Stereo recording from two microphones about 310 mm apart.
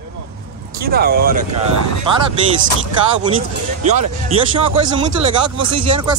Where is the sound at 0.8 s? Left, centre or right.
Right.